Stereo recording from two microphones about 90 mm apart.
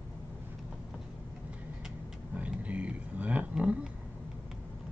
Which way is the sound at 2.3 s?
15° right (ahead or behind).